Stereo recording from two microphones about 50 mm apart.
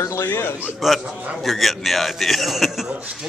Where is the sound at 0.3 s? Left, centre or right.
Left.